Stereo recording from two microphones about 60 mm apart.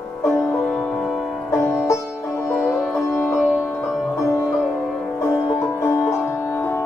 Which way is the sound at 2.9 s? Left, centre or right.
Left.